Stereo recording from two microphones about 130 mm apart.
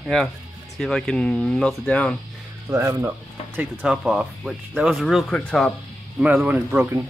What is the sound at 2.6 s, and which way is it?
Speech, 20° right (ahead or behind).